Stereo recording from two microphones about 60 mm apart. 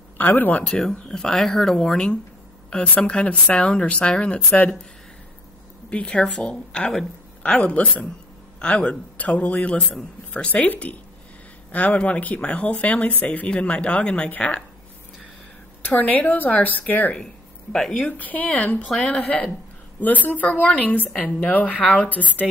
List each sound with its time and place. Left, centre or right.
0.2 s speech: left
0.7 s speech: centre
2.7 s speech: left
5.9 s speech: centre
15.8 s speech: left
18.9 s speech: centre
20.0 s speech: left